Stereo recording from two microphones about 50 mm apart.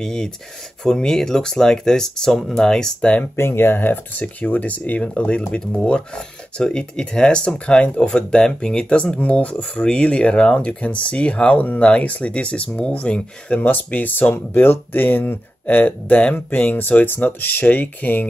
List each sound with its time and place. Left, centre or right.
0.0 s speech: centre
3.0 s speech: left
3.3 s speech: left
8.2 s speech: centre
13.6 s speech: left
14.3 s speech: left